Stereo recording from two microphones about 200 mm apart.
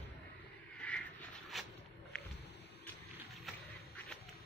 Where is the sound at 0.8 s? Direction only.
5° left (ahead or behind).